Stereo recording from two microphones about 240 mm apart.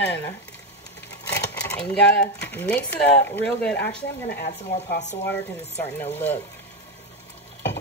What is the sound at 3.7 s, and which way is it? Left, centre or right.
Speech, left.